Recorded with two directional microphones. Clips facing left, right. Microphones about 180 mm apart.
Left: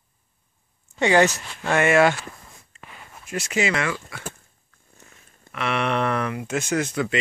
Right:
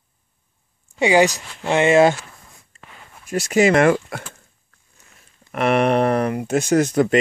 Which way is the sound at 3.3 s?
40° right (ahead or behind).